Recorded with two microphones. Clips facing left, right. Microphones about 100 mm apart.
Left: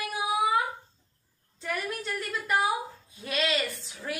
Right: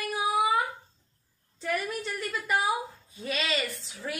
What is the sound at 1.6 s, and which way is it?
A woman's voice, centre (ahead or behind).